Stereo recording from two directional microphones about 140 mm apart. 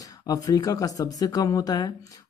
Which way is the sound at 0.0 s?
25° left (ahead or behind).